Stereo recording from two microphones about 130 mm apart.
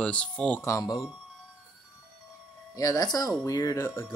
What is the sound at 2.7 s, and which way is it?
Speech, 30° left (ahead or behind).